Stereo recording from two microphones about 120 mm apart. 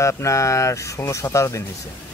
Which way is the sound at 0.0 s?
25° left (ahead or behind).